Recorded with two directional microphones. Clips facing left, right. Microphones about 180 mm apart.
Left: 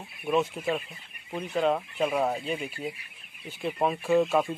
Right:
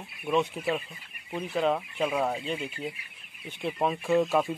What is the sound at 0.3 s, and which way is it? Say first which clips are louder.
Speech: left 1 dB; centre (ahead or behind).